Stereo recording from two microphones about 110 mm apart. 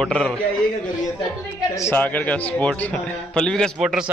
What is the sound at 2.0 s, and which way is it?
A man's voice, 15° left (ahead or behind).